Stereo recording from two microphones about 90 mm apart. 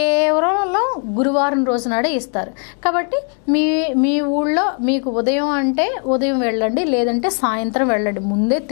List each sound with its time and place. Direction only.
0.0 s a woman's voice: 15° left (ahead or behind)